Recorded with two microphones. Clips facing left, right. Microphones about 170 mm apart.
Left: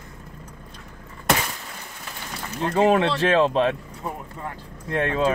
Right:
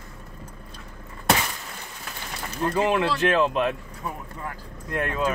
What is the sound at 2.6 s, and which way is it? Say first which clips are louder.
Speech: left 4 dB; 30° left (ahead or behind).